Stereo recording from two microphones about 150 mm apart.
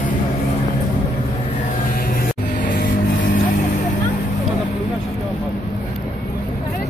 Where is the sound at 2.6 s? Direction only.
60° left (ahead or behind).